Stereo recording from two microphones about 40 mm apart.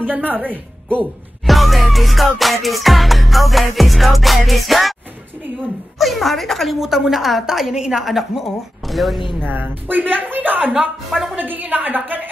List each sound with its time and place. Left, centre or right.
0.3 s a woman's voice: right
1.4 s music: centre
5.9 s music: centre
6.8 s a woman's voice: centre
8.0 s music: centre
9.4 s speech: right
10.7 s a woman's voice: centre
11.3 s speech: right